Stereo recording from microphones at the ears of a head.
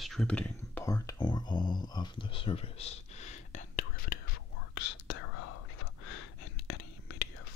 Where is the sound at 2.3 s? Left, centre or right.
Left.